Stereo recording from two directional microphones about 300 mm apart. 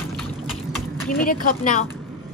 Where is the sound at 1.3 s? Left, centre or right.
Left.